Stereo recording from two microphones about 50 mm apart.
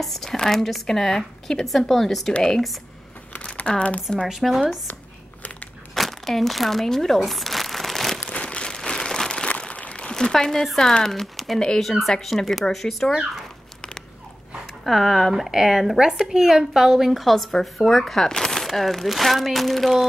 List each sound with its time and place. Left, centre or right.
0.0 s a woman's voice: centre
2.3 s speech: centre
4.3 s a woman's voice: centre
5.9 s crumpling: centre
8.2 s a sound: left
9.6 s speech: left; by 13.1 s centre
14.9 s a woman's voice: centre